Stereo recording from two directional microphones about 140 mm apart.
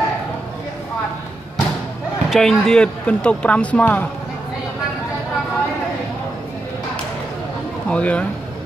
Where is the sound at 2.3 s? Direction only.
Centre (ahead or behind).